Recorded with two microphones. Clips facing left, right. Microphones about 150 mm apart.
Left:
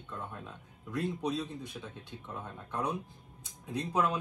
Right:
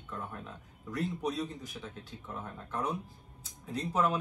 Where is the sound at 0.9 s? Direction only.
20° left (ahead or behind).